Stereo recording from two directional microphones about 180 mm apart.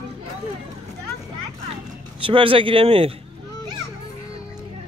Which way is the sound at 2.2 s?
30° right (ahead or behind).